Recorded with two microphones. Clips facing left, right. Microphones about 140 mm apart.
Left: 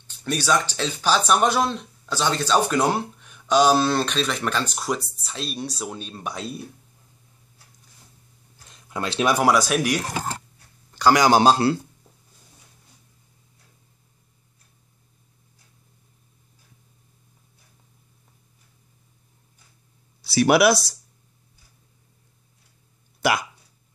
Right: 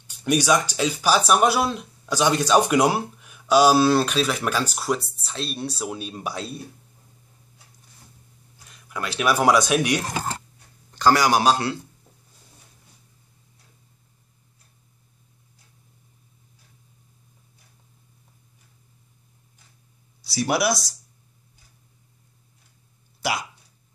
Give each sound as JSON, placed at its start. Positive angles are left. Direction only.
{"t": 0.0, "sound": "speech", "side_deg": -10}
{"t": 8.7, "sound": "speech", "side_deg": 25}
{"t": 9.4, "sound": "speech", "side_deg": 5}
{"t": 11.2, "sound": "speech", "side_deg": 30}
{"t": 20.2, "sound": "speech", "side_deg": 65}